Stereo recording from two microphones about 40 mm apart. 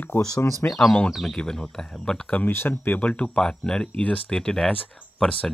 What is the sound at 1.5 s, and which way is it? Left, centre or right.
Speech, centre.